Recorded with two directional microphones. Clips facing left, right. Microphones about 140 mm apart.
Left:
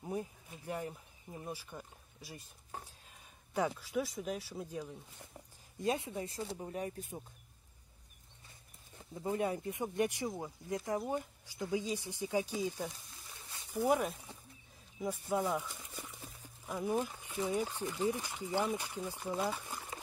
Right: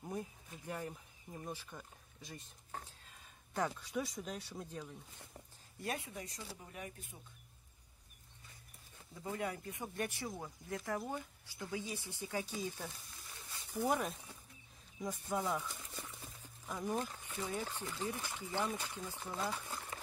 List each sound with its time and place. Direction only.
0.0 s a sound: 10° left (ahead or behind)
3.5 s speech: 5° left (ahead or behind); by 7.2 s 40° left (ahead or behind)
9.1 s speech: 25° left (ahead or behind)